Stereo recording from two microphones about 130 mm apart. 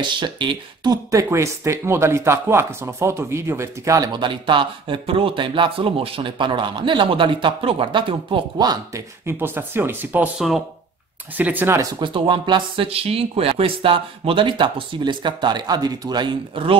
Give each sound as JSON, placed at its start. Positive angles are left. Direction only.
{"t": 0.0, "sound": "speech", "side_deg": -35}
{"t": 1.1, "sound": "speech", "side_deg": -20}
{"t": 9.2, "sound": "speech", "side_deg": -15}
{"t": 11.3, "sound": "speech", "side_deg": -15}
{"t": 12.0, "sound": "speech", "side_deg": -40}